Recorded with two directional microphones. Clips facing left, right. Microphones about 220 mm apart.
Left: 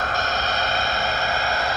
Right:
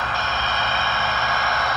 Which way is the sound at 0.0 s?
45° left (ahead or behind).